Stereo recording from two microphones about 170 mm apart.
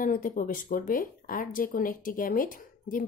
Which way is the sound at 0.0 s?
50° left (ahead or behind).